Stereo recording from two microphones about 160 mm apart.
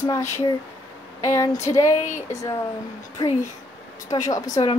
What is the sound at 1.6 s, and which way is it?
Speech, 20° left (ahead or behind).